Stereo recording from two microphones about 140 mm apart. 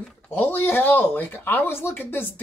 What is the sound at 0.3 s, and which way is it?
Speech, 15° left (ahead or behind).